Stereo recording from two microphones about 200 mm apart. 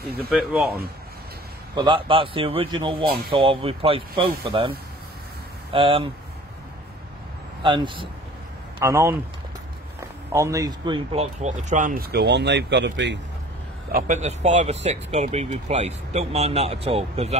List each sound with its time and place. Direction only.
0.3 s speech: 5° right (ahead or behind)
1.8 s a man's voice: 25° right (ahead or behind)
7.6 s a man's voice: 25° right (ahead or behind)
8.7 s speech: 15° right (ahead or behind)
10.3 s speech: 15° right (ahead or behind)
11.3 s speech: 35° right (ahead or behind); by 13.2 s 60° right (ahead or behind)
13.9 s speech: 40° right (ahead or behind)